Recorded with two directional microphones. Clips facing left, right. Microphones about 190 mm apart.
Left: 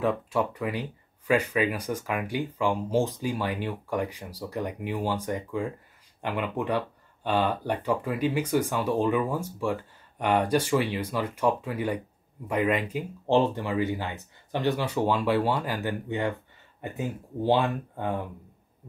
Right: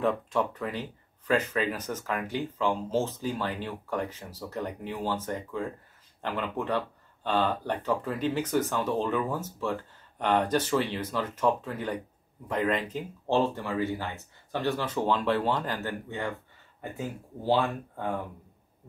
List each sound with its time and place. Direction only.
0.0 s speech: 5° left (ahead or behind)